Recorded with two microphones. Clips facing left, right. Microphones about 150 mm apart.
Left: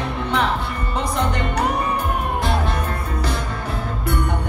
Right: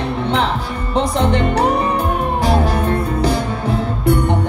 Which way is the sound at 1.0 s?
30° right (ahead or behind).